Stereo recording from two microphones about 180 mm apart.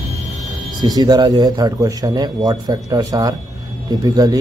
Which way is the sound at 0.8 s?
25° right (ahead or behind).